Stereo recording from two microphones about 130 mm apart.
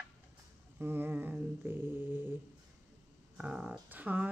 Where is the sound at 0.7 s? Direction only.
15° right (ahead or behind).